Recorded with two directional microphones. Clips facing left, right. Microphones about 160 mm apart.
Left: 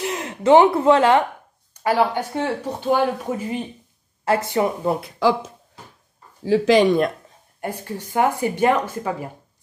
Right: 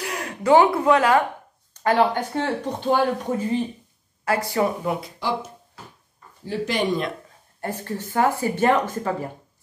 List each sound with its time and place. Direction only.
0.0 s a woman's voice: 25° left (ahead or behind)
1.7 s speech: 10° left (ahead or behind)
4.2 s speech: 25° left (ahead or behind)
6.4 s speech: 90° left
7.6 s speech: 15° left (ahead or behind)